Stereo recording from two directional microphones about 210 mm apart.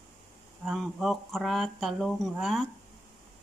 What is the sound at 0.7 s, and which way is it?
Speech, centre (ahead or behind).